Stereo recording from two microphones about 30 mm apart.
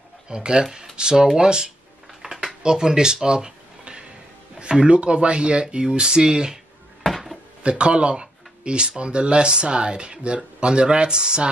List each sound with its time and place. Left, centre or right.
0.3 s speech: right
7.1 s dishes: centre
7.6 s speech: right